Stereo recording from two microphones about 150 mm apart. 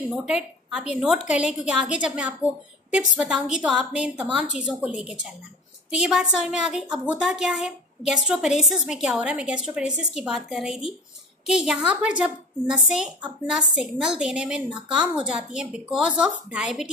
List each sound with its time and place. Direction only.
0.1 s a woman's voice: 5° right (ahead or behind)